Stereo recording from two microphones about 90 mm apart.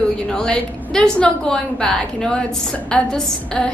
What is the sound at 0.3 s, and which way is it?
A woman's voice, 10° left (ahead or behind).